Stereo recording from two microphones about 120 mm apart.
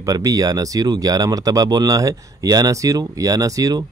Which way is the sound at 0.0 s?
30° right (ahead or behind).